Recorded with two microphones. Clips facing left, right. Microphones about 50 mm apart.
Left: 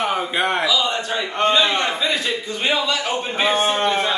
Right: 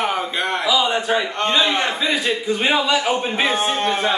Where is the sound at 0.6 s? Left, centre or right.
Right.